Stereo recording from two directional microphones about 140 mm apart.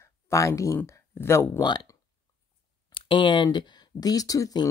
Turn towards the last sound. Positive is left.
turn(degrees=25)  # may be behind; listen again after turning